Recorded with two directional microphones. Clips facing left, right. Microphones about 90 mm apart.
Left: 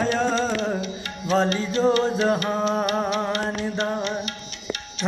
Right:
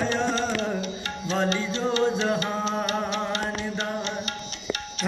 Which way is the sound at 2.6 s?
30° right (ahead or behind).